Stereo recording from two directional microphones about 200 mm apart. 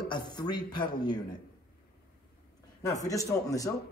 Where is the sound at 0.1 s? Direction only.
20° left (ahead or behind).